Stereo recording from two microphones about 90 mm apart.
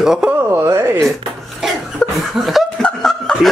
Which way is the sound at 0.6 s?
30° right (ahead or behind).